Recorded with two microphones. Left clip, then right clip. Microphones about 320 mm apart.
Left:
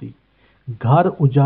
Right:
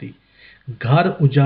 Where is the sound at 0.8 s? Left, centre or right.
Left.